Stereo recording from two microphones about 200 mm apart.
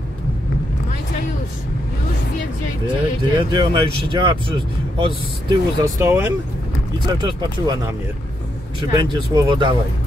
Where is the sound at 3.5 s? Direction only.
20° right (ahead or behind).